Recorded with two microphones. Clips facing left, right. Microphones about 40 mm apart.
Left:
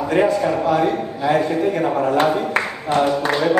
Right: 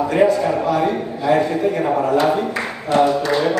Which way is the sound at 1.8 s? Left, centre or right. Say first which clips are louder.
Right 1 dB; centre.